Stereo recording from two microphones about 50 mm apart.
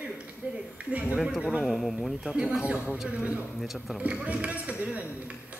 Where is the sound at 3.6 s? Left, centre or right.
Centre.